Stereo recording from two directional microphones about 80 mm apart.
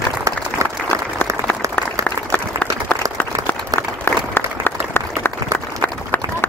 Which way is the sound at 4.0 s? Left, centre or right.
Left.